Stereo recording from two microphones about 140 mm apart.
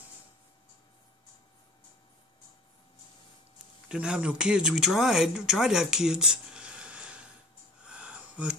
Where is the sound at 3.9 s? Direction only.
5° right (ahead or behind).